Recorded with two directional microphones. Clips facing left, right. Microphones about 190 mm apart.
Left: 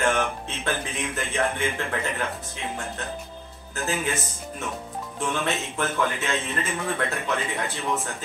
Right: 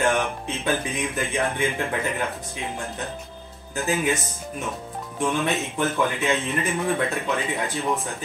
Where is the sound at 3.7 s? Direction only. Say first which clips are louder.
Right 4 dB; 15° right (ahead or behind).